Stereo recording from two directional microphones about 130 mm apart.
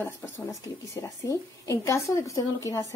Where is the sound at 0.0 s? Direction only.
20° left (ahead or behind).